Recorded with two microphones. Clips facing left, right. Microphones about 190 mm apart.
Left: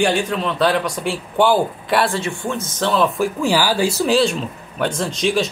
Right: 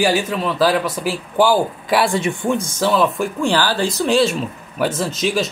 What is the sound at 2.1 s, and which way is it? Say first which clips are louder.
Speech: right 4 dB; 15° right (ahead or behind).